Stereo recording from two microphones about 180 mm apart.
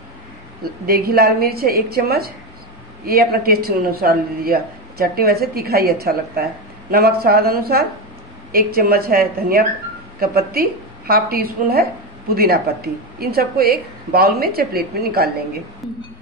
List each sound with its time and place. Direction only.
0.8 s a woman's voice: 55° right (ahead or behind)